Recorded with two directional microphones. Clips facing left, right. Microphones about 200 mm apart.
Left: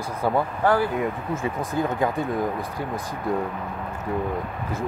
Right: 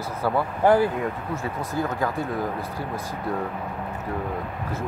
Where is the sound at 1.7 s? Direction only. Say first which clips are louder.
Left 2 dB; 20° left (ahead or behind).